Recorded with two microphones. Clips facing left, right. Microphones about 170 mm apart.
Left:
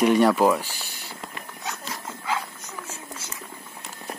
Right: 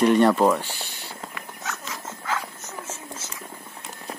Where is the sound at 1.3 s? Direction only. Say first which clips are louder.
Left 1 dB; 20° left (ahead or behind).